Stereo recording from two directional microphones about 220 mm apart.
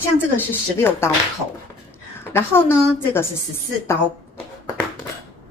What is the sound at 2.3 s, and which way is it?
Speech, 10° left (ahead or behind).